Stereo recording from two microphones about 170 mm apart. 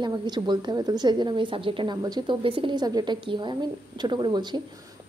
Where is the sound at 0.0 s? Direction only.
25° right (ahead or behind).